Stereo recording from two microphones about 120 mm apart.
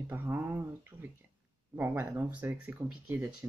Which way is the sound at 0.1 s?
20° right (ahead or behind).